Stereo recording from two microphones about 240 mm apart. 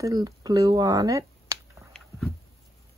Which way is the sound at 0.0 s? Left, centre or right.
Centre.